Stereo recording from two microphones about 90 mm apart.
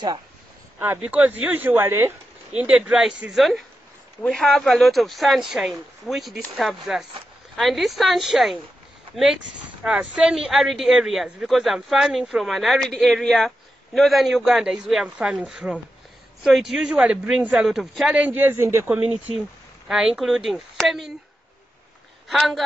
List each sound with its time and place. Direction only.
1.0 s a man's voice: 10° right (ahead or behind)
2.5 s a man's voice: 10° right (ahead or behind); by 18.9 s 30° right (ahead or behind)
18.9 s a man's voice: 15° right (ahead or behind)
22.3 s speech: centre (ahead or behind)